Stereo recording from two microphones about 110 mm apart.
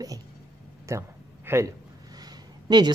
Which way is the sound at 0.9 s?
25° right (ahead or behind).